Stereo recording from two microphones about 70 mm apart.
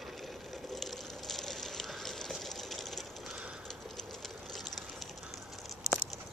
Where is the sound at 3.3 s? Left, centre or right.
Centre.